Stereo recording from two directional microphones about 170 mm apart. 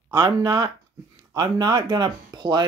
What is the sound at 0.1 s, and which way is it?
Speech, 25° right (ahead or behind).